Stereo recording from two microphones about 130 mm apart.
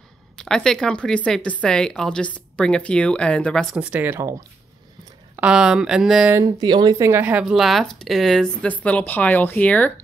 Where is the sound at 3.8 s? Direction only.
10° right (ahead or behind).